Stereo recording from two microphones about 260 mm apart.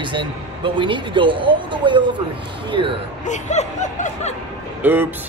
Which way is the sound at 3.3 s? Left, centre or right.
Left.